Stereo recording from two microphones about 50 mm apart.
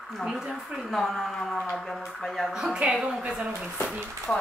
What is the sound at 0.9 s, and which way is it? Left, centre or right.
Speech, centre.